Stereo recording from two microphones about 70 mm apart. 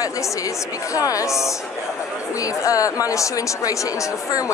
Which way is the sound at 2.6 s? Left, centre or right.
Left.